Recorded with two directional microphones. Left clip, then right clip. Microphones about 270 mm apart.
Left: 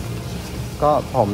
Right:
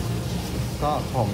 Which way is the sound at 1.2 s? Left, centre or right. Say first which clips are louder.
Left 8 dB; left.